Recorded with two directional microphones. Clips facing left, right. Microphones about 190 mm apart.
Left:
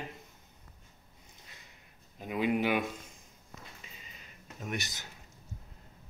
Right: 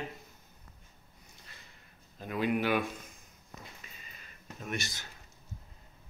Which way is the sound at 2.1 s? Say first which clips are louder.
Left 1 dB; 15° left (ahead or behind).